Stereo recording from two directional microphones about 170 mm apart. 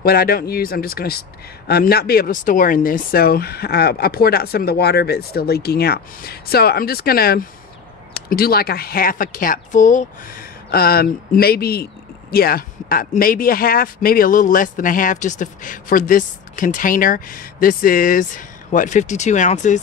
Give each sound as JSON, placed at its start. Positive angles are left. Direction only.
{"t": 0.0, "sound": "speech", "side_deg": 65}
{"t": 10.7, "sound": "speech", "side_deg": 65}